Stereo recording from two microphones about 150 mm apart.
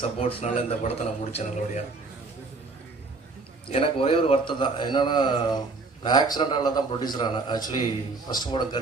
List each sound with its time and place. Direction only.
0.0 s a man's voice: 40° left (ahead or behind)
3.6 s a man's voice: 40° left (ahead or behind)